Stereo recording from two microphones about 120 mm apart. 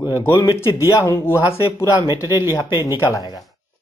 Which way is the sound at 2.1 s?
35° left (ahead or behind).